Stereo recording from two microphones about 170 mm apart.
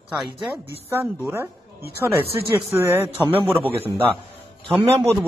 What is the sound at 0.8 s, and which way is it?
Speech, 15° right (ahead or behind).